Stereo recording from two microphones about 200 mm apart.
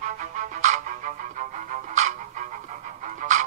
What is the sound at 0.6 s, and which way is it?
Music, 35° right (ahead or behind).